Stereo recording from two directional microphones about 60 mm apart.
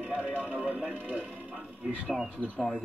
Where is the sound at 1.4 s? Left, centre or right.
Right.